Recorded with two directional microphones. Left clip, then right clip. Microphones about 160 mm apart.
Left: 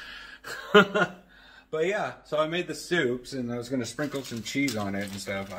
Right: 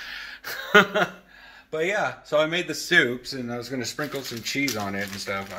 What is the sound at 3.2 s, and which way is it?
Speech, 20° left (ahead or behind).